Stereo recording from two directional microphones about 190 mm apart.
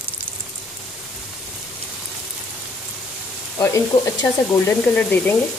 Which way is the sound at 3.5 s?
20° left (ahead or behind).